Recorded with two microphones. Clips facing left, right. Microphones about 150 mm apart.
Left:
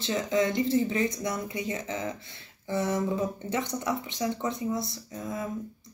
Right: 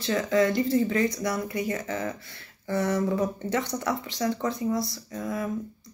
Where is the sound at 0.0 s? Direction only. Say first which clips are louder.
Right 3 dB; 20° left (ahead or behind).